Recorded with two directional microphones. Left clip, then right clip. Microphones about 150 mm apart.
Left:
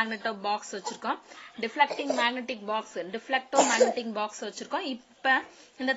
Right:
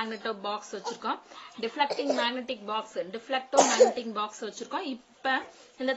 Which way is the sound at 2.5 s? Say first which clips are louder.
Even; 30° left (ahead or behind).